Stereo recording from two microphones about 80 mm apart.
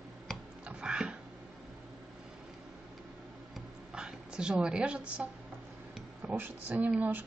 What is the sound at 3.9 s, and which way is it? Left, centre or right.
A woman's voice, centre.